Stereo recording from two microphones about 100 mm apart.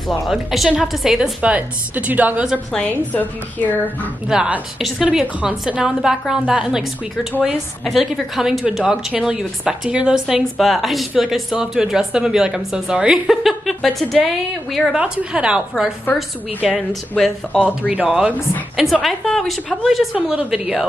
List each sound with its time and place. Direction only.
0.3 s a woman's voice: 5° right (ahead or behind)
2.7 s a woman's voice: 10° left (ahead or behind)
4.3 s a woman's voice: 5° right (ahead or behind)
15.0 s a woman's voice: 10° right (ahead or behind)
17.2 s a woman's voice: 10° left (ahead or behind)
17.6 s a woman's voice: 15° right (ahead or behind)